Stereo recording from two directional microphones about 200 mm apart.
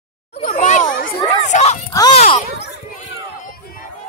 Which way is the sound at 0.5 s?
40° left (ahead or behind).